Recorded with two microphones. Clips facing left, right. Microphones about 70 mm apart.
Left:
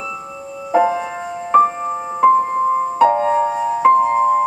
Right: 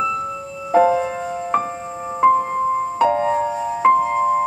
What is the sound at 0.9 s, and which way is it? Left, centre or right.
Music, centre.